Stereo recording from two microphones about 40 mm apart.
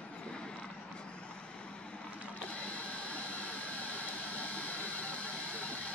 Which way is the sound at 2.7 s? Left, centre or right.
Left.